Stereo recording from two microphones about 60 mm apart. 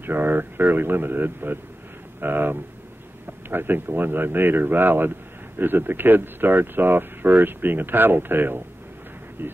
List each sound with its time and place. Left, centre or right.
0.0 s speech: right